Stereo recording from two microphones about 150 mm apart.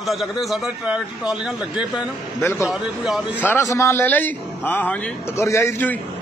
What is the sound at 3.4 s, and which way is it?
A man's voice, 20° left (ahead or behind).